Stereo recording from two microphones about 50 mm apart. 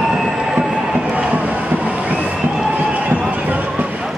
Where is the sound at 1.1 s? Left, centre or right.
Right.